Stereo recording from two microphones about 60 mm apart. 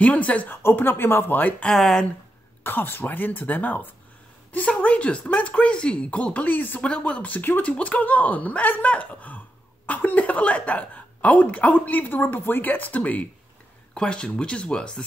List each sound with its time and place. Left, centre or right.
0.0 s speech: left
0.6 s speech: left
1.7 s speech: centre
2.6 s speech: left
6.8 s speech: centre
13.9 s speech: centre